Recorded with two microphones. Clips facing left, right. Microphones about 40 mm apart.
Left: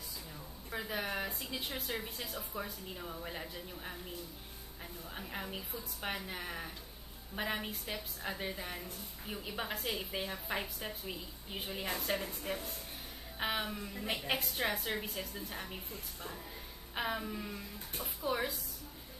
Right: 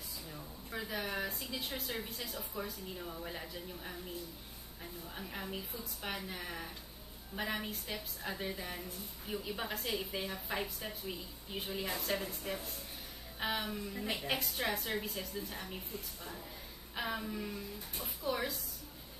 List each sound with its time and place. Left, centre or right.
0.7 s a woman's voice: centre
5.1 s a woman's voice: centre
11.8 s a woman's voice: left; by 15.8 s centre
16.9 s a woman's voice: centre